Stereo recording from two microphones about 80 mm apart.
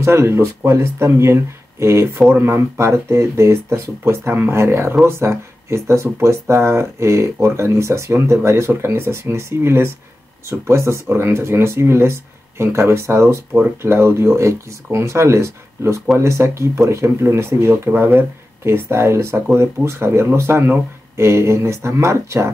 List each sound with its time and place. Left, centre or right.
0.0 s speech: right